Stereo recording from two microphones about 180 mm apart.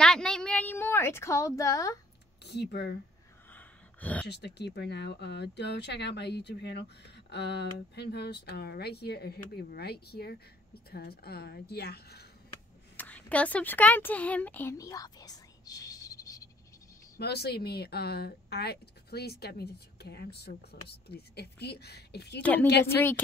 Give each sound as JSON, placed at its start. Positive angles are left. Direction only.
{"t": 0.0, "sound": "a sound", "side_deg": 5}
{"t": 2.4, "sound": "speech", "side_deg": 65}
{"t": 3.5, "sound": "a sound", "side_deg": 10}
{"t": 4.3, "sound": "speech", "side_deg": 70}
{"t": 12.9, "sound": "speech", "side_deg": 10}
{"t": 17.2, "sound": "speech", "side_deg": 65}
{"t": 22.4, "sound": "speech", "side_deg": 10}